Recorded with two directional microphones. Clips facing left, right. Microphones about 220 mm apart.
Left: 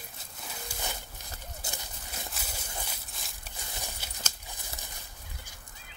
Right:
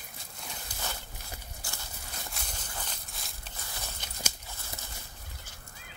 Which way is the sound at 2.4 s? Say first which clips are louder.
Left 1 dB; centre (ahead or behind).